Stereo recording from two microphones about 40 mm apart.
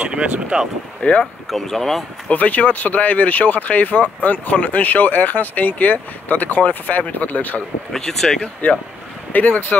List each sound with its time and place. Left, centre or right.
0.1 s speech: right
1.2 s speech: centre
2.3 s speech: left
7.9 s speech: centre
8.4 s speech: left
9.3 s speech: left